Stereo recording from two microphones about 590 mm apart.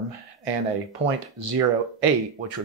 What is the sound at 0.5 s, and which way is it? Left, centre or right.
Speech, right.